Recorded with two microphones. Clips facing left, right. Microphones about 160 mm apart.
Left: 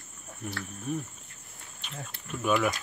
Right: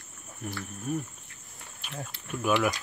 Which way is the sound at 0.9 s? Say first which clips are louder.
Right 1 dB; 5° right (ahead or behind).